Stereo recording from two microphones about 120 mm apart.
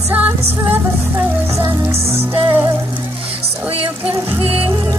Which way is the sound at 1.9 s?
55° right (ahead or behind).